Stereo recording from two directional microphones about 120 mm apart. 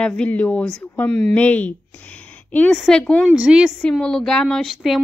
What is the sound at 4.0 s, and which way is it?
Speech, 5° left (ahead or behind).